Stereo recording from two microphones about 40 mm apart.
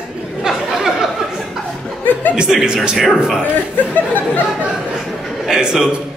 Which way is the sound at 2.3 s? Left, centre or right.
Centre.